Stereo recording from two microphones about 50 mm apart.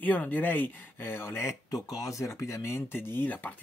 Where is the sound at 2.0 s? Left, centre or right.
Left.